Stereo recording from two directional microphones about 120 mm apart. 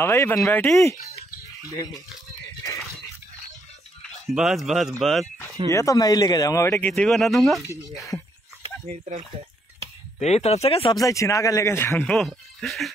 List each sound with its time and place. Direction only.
0.0 s a man's voice: 20° left (ahead or behind)
0.7 s a sound: 25° left (ahead or behind)
4.3 s speech: centre (ahead or behind)
5.7 s a man's voice: 25° left (ahead or behind)
6.9 s speech: centre (ahead or behind)
8.8 s speech: 90° right
10.2 s speech: 65° left (ahead or behind)
11.0 s a man's voice: 25° left (ahead or behind)
12.0 s speech: 5° left (ahead or behind)